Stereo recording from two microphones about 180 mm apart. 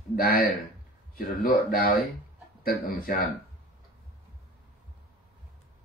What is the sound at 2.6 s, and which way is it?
Speech, 50° left (ahead or behind).